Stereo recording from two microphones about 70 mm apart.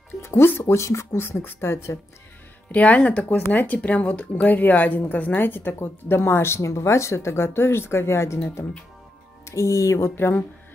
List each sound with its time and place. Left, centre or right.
0.2 s speech: left
2.7 s speech: left
9.5 s speech: left